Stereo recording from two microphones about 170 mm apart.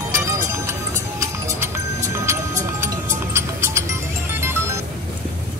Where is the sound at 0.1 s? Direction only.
15° right (ahead or behind).